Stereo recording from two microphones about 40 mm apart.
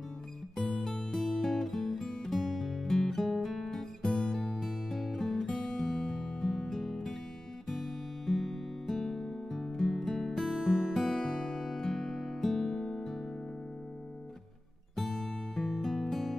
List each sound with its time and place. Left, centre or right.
0.6 s music: centre
4.0 s music: centre
4.6 s music: centre
5.5 s music: centre
11.0 s music: centre
15.0 s music: centre